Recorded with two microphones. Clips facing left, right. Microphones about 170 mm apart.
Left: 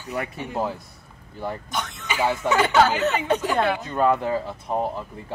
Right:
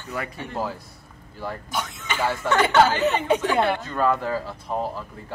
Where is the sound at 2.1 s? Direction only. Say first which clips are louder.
Left 1 dB; 10° left (ahead or behind).